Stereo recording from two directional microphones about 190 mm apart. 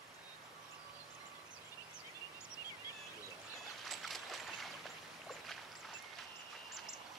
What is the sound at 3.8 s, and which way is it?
Vehicle, centre (ahead or behind).